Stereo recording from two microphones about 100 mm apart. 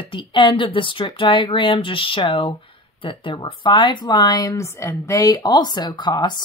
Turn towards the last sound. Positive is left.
turn(degrees=45)  # may be behind; listen again after turning